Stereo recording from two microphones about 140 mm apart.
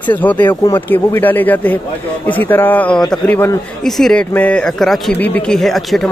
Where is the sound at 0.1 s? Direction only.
10° left (ahead or behind).